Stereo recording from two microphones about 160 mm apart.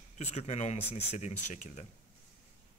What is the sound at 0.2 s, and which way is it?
Speech, 40° left (ahead or behind).